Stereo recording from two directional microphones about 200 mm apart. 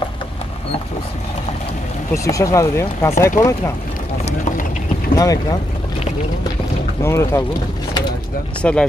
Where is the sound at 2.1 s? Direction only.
15° left (ahead or behind).